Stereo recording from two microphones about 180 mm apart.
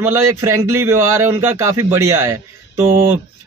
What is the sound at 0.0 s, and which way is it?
A man's voice, 15° right (ahead or behind).